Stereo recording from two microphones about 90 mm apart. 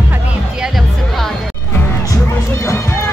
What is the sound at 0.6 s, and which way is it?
Music, centre (ahead or behind).